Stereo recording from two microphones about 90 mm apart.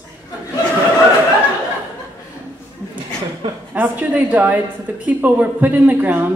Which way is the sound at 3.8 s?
20° right (ahead or behind).